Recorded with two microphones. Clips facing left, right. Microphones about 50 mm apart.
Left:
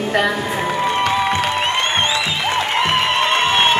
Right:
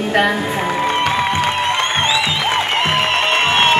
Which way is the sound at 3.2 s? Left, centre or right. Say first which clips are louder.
Right 1 dB; right.